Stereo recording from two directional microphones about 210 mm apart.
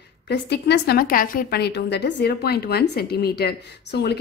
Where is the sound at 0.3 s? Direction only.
55° left (ahead or behind).